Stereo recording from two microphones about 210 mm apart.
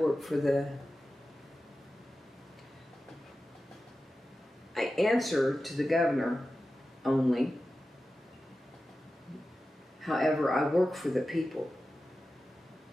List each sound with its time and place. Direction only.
0.0 s speech: centre (ahead or behind)
4.7 s speech: centre (ahead or behind)
10.0 s speech: centre (ahead or behind)